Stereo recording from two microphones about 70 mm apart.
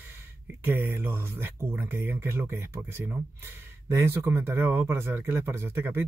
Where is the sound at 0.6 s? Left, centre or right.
Right.